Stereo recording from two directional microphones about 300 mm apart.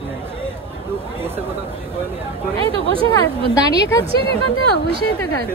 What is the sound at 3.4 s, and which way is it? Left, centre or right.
Speech, left.